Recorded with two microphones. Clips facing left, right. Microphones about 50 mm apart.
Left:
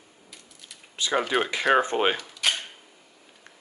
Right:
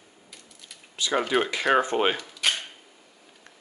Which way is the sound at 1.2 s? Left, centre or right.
Centre.